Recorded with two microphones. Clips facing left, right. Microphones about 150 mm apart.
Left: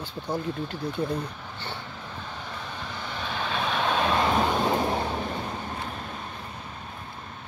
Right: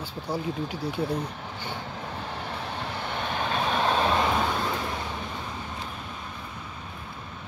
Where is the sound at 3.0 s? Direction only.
50° right (ahead or behind); by 4.0 s 35° right (ahead or behind).